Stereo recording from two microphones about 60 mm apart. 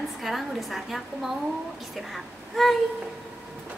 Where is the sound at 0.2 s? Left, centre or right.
Centre.